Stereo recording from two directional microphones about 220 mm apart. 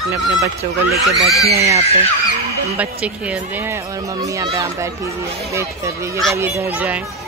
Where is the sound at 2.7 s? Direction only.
5° right (ahead or behind).